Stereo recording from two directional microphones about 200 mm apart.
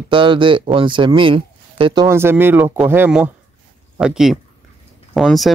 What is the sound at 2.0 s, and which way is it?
Speech, 10° right (ahead or behind).